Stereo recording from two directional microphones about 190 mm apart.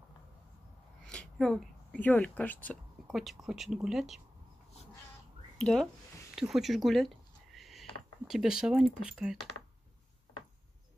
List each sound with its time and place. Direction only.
1.0 s a woman's voice: 5° left (ahead or behind)
5.6 s speech: centre (ahead or behind)
6.3 s a sound: centre (ahead or behind)
8.3 s speech: 5° right (ahead or behind)